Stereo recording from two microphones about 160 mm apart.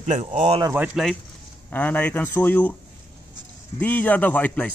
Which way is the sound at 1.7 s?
10° left (ahead or behind).